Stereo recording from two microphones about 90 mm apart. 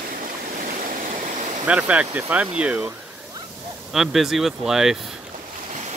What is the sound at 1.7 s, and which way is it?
Speech, 15° right (ahead or behind).